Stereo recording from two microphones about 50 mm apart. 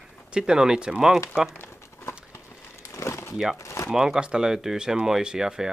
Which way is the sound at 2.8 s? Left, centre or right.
Left.